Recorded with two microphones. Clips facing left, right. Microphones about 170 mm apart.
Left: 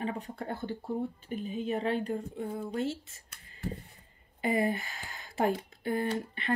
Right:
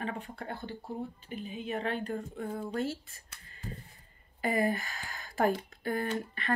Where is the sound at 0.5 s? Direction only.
50° left (ahead or behind); by 2.4 s 30° left (ahead or behind).